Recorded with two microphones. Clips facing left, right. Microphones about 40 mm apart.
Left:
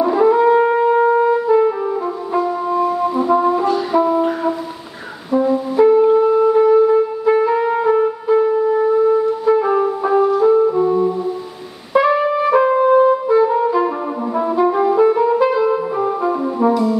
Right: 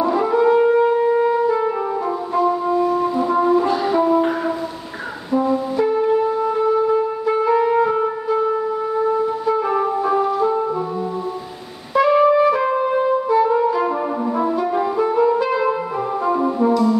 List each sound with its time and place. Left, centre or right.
0.0 s wind instrument: centre
1.1 s music: centre
2.3 s brass instrument: centre
5.3 s wind instrument: centre
9.0 s music: centre
12.1 s music: centre
15.6 s music: centre
16.5 s music: centre